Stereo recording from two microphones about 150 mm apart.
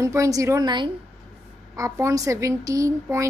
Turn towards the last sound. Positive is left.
turn(degrees=-20)  # may be behind; listen again after turning